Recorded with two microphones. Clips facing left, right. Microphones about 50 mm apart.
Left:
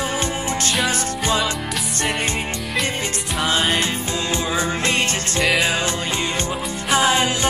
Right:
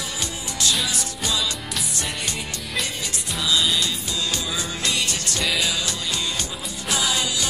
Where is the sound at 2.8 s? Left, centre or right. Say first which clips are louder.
Left 6 dB; left.